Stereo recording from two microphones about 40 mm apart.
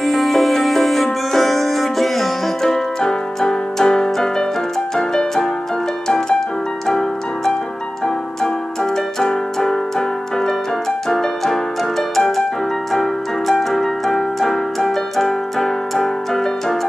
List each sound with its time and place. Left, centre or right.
0.0 s music: centre
8.9 s keyboard: centre
11.1 s music: centre